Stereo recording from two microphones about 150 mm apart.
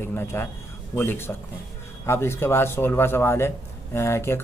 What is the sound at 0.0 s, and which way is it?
A man's voice, 15° left (ahead or behind).